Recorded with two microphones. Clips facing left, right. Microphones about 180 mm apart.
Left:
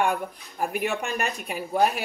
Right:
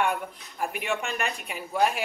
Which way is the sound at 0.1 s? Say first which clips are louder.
Left 3 dB; 40° left (ahead or behind).